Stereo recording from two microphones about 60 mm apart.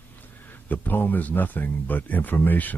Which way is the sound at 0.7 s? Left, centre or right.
Left.